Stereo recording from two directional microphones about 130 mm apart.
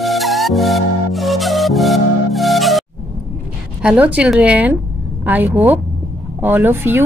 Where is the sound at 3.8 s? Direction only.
10° right (ahead or behind).